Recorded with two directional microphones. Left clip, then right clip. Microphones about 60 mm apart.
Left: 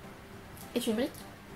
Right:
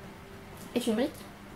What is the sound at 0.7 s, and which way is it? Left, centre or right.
Speech, centre.